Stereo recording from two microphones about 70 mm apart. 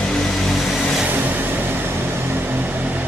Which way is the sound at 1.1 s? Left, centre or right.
Right.